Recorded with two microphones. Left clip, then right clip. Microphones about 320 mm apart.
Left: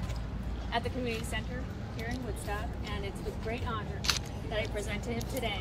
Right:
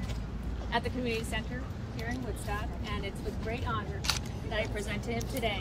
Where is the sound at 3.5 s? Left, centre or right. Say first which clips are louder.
Right 2 dB; centre.